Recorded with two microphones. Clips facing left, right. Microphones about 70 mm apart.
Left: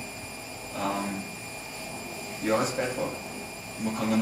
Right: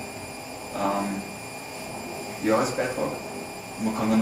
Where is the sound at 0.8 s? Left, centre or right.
Centre.